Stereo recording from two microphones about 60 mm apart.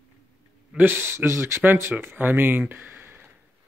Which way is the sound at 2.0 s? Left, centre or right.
Right.